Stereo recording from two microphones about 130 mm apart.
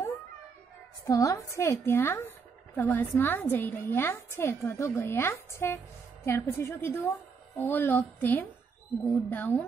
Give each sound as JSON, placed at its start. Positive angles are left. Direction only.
{"t": 1.0, "sound": "a woman's voice", "side_deg": 25}